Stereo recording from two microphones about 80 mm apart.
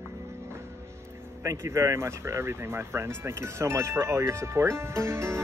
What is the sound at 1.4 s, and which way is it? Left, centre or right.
Speech, right.